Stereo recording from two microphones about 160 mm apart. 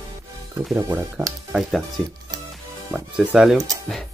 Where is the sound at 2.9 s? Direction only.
5° right (ahead or behind).